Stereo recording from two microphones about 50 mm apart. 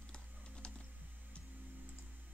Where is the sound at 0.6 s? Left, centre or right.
Centre.